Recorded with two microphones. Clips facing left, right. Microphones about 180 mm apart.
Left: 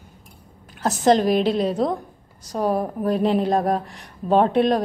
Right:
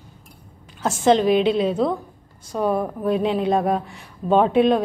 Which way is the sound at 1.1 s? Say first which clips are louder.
Right 1 dB; 40° left (ahead or behind).